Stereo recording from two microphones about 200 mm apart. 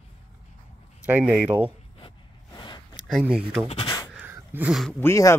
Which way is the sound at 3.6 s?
25° left (ahead or behind).